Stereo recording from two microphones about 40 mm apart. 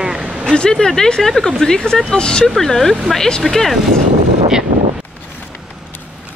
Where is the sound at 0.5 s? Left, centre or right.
Left.